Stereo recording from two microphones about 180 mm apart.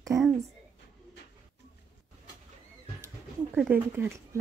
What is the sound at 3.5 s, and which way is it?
Speech, 10° right (ahead or behind).